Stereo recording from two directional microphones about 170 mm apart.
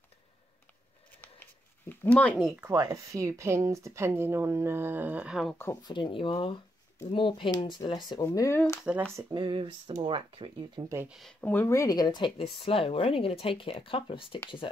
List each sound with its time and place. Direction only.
1.9 s speech: 10° left (ahead or behind)
2.7 s speech: 20° right (ahead or behind); by 5.6 s centre (ahead or behind)
5.6 s speech: 20° left (ahead or behind)
8.3 s speech: 15° left (ahead or behind)
9.3 s speech: 30° right (ahead or behind)
11.1 s speech: centre (ahead or behind)
11.4 s speech: 15° left (ahead or behind); by 14.4 s 30° left (ahead or behind)